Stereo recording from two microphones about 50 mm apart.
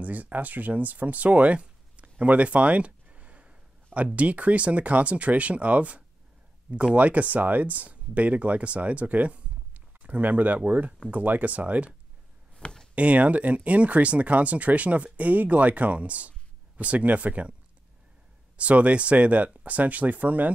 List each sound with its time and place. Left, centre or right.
0.0 s speech: right
12.5 s a sound: centre
12.9 s speech: right
18.6 s speech: right